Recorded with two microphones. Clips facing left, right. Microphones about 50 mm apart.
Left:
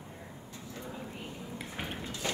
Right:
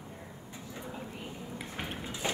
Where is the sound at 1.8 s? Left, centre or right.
Centre.